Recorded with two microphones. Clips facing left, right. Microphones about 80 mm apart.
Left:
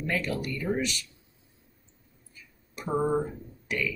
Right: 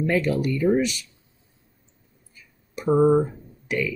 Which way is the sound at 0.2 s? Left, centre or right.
Right.